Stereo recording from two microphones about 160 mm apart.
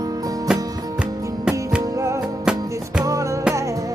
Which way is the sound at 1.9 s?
20° right (ahead or behind).